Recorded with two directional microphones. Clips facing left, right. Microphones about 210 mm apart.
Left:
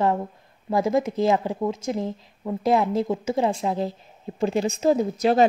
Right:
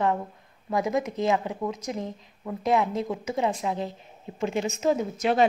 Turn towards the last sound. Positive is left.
turn(degrees=35)  # may be behind; listen again after turning